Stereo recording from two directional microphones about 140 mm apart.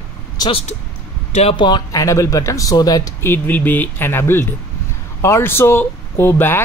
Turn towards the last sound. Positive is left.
turn(degrees=15)  # may be behind; listen again after turning